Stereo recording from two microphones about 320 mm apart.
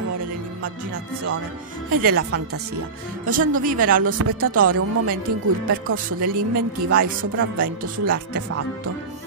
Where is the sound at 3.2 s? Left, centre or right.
Right.